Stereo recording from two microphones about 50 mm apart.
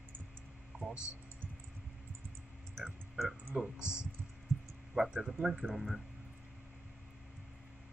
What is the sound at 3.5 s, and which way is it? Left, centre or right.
Speech, centre.